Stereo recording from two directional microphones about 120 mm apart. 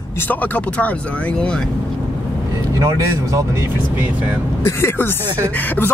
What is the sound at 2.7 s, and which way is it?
Speech, 30° right (ahead or behind).